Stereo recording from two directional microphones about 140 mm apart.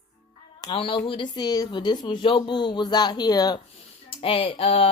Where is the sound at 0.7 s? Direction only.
40° left (ahead or behind).